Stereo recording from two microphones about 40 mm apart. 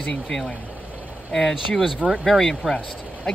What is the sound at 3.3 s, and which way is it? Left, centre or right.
Speech, centre.